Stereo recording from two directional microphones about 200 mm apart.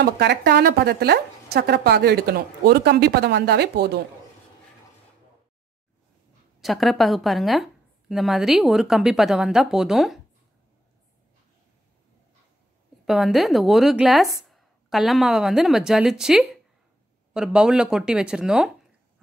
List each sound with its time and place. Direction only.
0.0 s a woman's voice: 55° right (ahead or behind)
6.6 s a woman's voice: centre (ahead or behind)
13.0 s a woman's voice: centre (ahead or behind)